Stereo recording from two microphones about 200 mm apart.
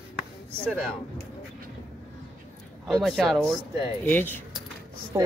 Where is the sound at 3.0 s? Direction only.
Centre (ahead or behind).